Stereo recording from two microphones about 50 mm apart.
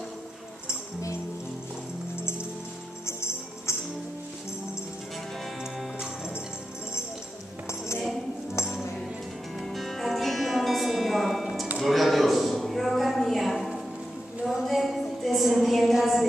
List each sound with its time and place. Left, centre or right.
0.7 s music: left
3.1 s music: left
9.6 s music: centre
11.8 s a sound: centre
14.6 s music: centre